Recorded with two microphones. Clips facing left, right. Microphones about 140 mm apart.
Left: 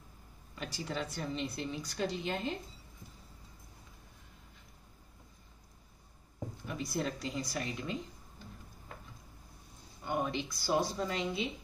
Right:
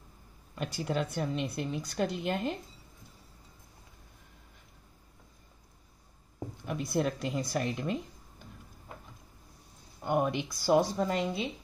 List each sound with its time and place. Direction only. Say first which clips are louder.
0.6 s a woman's voice: right 6 dB; 55° right (ahead or behind)
6.6 s a woman's voice: right 6 dB; 60° right (ahead or behind)
10.0 s a woman's voice: right 5 dB; 50° right (ahead or behind)